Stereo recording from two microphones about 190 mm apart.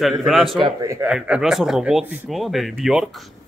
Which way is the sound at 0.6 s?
15° right (ahead or behind).